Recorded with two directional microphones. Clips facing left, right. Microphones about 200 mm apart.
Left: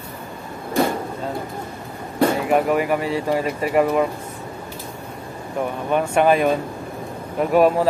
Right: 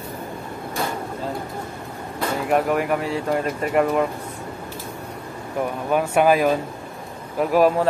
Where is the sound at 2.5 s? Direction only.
Centre (ahead or behind).